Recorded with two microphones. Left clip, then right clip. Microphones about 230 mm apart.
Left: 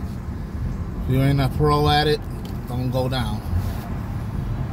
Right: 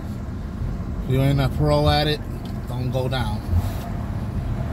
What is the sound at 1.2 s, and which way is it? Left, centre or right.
Speech, centre.